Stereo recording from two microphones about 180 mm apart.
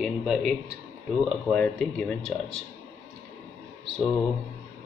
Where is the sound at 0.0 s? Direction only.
Centre (ahead or behind).